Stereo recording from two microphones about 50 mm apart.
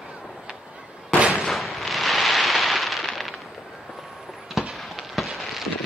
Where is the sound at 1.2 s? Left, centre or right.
Right.